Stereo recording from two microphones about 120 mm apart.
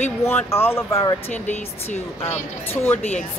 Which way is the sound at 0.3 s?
20° left (ahead or behind).